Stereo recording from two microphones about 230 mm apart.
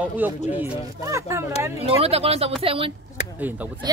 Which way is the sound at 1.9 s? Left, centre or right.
Right.